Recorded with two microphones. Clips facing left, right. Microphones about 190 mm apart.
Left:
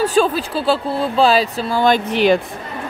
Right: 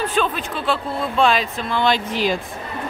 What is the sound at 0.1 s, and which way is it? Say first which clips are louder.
Speech: left 6 dB; 35° left (ahead or behind).